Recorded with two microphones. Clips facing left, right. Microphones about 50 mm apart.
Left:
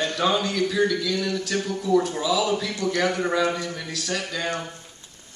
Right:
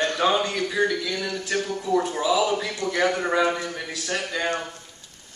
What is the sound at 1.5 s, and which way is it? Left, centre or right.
A man's voice, centre.